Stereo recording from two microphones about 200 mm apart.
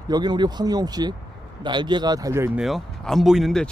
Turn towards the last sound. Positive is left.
turn(degrees=0)  # may be behind; listen again after turning